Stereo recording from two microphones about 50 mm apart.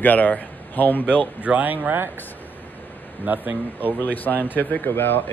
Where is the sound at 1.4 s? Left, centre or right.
Right.